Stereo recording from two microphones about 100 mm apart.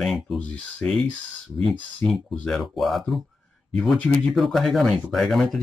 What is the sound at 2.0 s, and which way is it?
Speech, 90° right.